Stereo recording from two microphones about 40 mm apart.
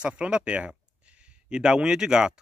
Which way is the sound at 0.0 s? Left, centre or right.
Right.